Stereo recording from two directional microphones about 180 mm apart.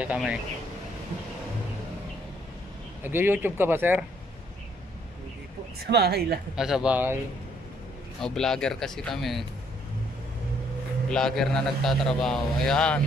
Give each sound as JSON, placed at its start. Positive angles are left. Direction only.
{"t": 0.0, "sound": "speech", "side_deg": -5}
{"t": 3.0, "sound": "speech", "side_deg": -10}
{"t": 5.8, "sound": "speech", "side_deg": -65}
{"t": 6.5, "sound": "a man's voice", "side_deg": -5}
{"t": 8.2, "sound": "a man's voice", "side_deg": 5}
{"t": 11.1, "sound": "a man's voice", "side_deg": 5}